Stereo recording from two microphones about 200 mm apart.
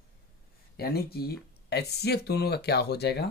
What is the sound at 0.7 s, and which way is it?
Speech, 50° left (ahead or behind).